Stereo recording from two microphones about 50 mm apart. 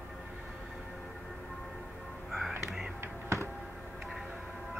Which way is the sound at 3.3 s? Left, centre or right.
Right.